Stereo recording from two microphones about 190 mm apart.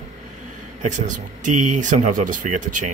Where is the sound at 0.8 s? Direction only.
40° right (ahead or behind).